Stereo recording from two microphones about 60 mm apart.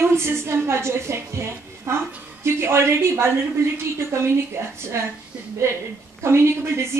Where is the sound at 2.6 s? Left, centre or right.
Right.